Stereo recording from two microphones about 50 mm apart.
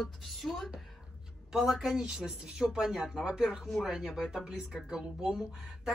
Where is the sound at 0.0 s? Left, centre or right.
Centre.